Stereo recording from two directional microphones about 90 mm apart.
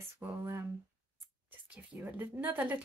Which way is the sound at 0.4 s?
35° right (ahead or behind).